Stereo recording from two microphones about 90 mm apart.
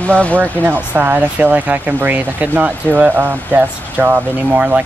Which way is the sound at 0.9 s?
25° right (ahead or behind).